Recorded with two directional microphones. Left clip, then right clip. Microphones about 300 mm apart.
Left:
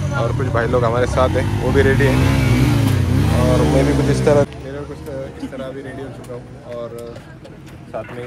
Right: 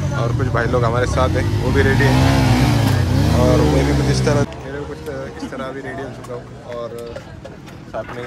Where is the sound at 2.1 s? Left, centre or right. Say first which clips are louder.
Right 2 dB; right.